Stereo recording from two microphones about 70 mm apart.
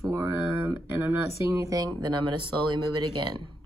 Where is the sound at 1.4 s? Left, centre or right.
Right.